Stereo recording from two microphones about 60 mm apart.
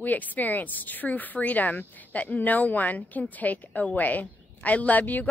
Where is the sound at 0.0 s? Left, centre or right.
Left.